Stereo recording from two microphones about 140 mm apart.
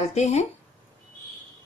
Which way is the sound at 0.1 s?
55° left (ahead or behind).